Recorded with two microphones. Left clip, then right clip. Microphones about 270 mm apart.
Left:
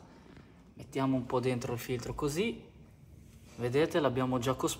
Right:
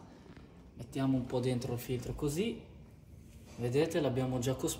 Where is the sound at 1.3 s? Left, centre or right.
Left.